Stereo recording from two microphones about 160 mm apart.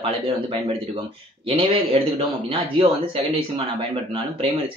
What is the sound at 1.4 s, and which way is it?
Speech, 35° right (ahead or behind).